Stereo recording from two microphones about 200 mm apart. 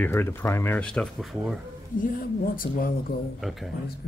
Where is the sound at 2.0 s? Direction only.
40° left (ahead or behind).